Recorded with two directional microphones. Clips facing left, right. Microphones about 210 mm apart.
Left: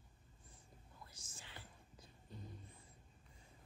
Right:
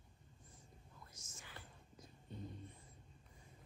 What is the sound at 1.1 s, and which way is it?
Whispering, 30° left (ahead or behind).